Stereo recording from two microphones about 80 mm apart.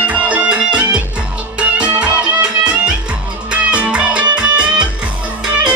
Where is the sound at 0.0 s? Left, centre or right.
Centre.